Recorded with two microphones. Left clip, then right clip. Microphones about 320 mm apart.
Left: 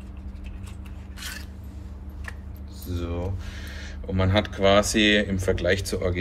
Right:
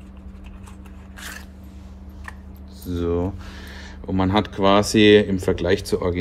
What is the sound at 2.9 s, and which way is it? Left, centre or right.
Speech, right.